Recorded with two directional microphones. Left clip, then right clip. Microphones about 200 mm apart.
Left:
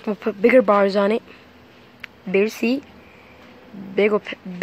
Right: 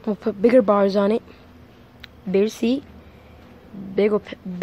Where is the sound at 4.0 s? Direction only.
Centre (ahead or behind).